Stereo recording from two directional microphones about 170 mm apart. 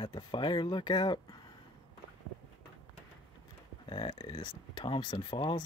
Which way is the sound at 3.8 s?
30° left (ahead or behind).